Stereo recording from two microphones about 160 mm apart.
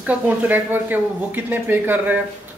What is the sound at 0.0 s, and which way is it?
Speech, 10° right (ahead or behind).